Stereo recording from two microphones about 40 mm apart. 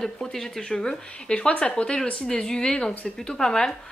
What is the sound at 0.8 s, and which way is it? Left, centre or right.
Speech, left.